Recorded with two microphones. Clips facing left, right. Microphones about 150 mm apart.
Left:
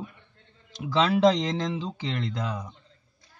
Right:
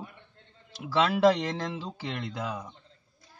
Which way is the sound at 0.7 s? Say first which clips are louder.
Left 2 dB; 5° right (ahead or behind).